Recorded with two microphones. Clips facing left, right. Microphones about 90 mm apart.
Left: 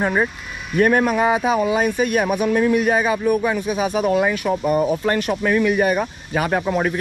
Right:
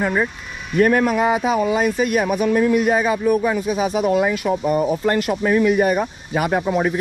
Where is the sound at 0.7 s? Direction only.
40° left (ahead or behind).